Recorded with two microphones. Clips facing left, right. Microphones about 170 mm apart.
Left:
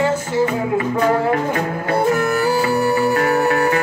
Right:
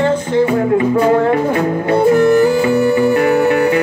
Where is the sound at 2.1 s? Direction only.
30° right (ahead or behind).